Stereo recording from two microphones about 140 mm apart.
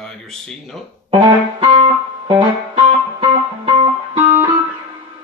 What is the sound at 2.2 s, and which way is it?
Music, 40° right (ahead or behind).